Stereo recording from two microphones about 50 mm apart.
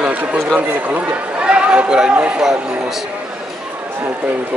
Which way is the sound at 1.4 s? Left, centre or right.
Centre.